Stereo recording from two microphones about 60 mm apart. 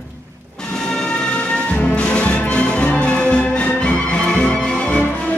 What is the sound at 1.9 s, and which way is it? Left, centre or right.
Music, centre.